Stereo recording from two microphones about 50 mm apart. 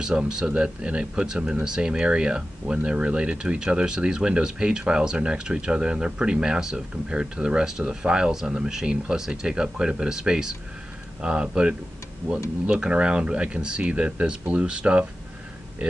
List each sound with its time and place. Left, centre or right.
0.0 s speech: centre